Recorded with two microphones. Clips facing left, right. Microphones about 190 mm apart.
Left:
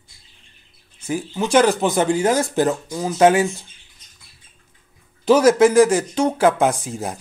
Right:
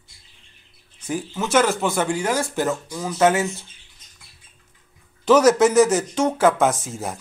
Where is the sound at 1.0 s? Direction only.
10° left (ahead or behind).